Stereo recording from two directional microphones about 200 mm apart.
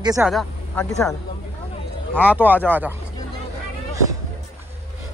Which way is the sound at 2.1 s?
10° left (ahead or behind).